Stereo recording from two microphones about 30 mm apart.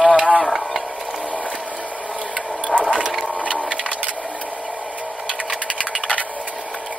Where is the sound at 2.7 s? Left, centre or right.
Right.